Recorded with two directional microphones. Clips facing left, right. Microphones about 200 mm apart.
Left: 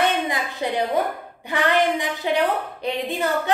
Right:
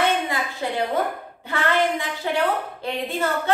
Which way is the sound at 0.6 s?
20° left (ahead or behind).